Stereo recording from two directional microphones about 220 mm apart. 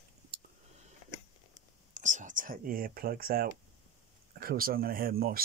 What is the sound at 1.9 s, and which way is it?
Speech, 35° right (ahead or behind).